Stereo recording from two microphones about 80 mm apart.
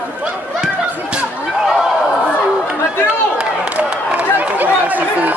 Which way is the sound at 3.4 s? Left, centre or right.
Centre.